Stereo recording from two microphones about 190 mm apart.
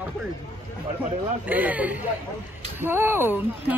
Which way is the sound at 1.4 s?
10° right (ahead or behind).